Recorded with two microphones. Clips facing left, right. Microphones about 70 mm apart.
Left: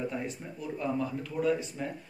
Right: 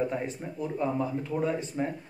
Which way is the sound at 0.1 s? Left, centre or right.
Right.